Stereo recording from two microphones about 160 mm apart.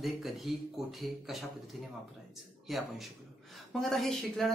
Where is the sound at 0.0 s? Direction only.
Centre (ahead or behind).